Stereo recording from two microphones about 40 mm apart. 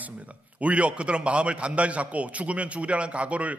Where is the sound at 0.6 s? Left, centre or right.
Right.